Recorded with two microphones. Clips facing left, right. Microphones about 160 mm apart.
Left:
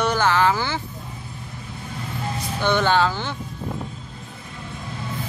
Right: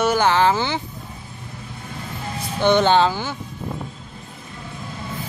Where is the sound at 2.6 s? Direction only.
20° right (ahead or behind).